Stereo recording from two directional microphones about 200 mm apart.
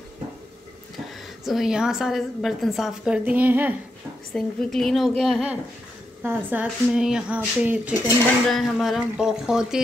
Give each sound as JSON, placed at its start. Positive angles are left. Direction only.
{"t": 0.9, "sound": "a woman's voice", "side_deg": 0}
{"t": 4.3, "sound": "a woman's voice", "side_deg": 5}